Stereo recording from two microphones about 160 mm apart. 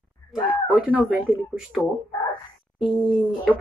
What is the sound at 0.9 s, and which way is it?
A woman's voice, centre (ahead or behind).